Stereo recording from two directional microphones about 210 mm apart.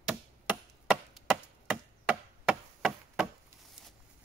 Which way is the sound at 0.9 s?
5° right (ahead or behind).